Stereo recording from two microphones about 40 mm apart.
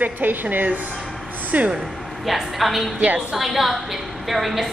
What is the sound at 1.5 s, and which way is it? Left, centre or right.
Speech, right.